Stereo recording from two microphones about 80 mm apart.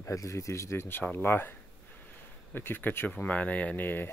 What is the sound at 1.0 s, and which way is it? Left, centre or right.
Speech, centre.